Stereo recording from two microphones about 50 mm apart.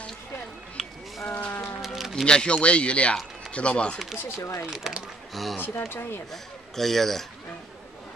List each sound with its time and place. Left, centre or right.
1.2 s a sound: left
1.8 s a sound: centre
2.2 s speech: centre
4.4 s speech: left
4.6 s speech: centre
5.3 s speech: centre
5.6 s speech: left
6.3 s speech: centre